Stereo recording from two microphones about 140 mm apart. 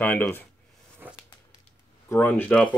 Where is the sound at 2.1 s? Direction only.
15° left (ahead or behind).